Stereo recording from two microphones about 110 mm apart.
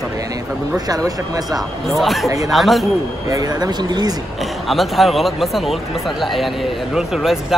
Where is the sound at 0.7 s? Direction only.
35° right (ahead or behind).